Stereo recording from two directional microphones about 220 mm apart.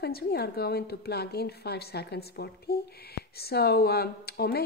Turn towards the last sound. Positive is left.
turn(degrees=45)  # may be behind; listen again after turning